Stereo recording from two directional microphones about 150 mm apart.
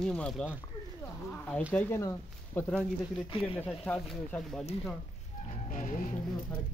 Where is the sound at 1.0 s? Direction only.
15° left (ahead or behind).